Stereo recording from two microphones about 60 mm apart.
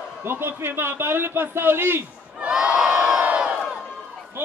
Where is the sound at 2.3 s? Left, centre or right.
Centre.